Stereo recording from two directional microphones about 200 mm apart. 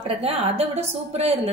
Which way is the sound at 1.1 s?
30° right (ahead or behind).